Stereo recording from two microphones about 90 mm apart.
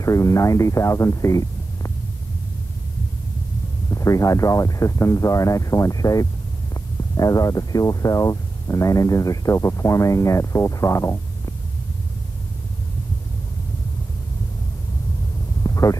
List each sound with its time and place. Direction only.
0.0 s speech: 35° left (ahead or behind)
3.9 s speech: 35° left (ahead or behind)
15.6 s hum: 40° left (ahead or behind)